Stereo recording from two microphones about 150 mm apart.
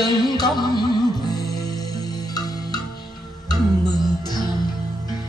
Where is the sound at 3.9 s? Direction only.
25° left (ahead or behind).